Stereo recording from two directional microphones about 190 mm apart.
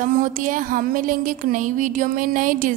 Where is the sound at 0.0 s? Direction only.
45° right (ahead or behind).